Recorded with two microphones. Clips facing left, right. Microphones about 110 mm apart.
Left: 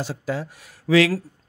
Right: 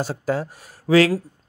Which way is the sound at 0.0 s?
45° right (ahead or behind).